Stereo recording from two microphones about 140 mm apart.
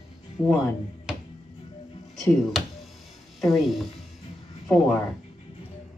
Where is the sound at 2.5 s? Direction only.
Centre (ahead or behind).